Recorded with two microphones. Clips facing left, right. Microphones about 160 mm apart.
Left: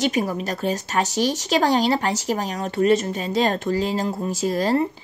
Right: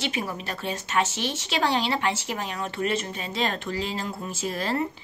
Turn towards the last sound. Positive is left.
turn(degrees=35)  # may be behind; listen again after turning